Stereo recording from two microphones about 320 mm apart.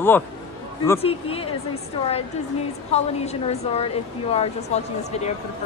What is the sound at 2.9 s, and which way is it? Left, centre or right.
Speech, centre.